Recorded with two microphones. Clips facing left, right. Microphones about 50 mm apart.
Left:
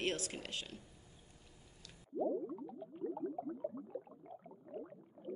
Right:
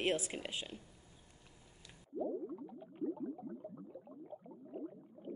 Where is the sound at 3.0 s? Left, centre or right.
Left.